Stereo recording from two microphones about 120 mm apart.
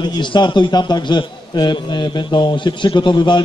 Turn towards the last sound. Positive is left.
turn(degrees=40)  # may be behind; listen again after turning